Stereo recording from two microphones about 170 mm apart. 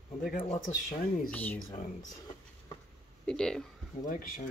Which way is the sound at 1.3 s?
10° left (ahead or behind).